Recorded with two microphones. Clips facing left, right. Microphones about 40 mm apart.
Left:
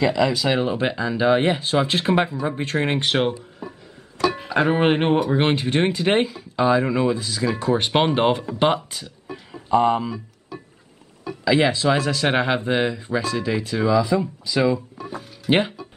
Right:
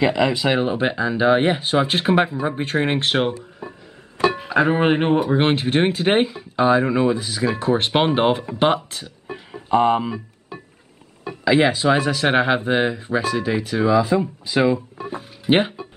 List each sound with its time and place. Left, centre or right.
0.0 s speech: right
4.2 s music: right
4.6 s speech: centre
5.3 s speech: centre
8.5 s speech: centre
9.3 s music: right
11.3 s dishes: right
11.7 s speech: centre